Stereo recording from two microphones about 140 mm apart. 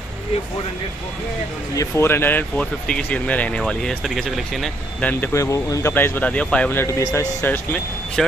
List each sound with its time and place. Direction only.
1.8 s speech: 20° left (ahead or behind); by 5.1 s centre (ahead or behind)
5.2 s speech: 20° left (ahead or behind)
8.2 s speech: 5° left (ahead or behind)